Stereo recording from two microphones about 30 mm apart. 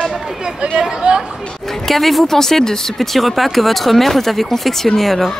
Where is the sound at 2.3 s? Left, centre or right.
Centre.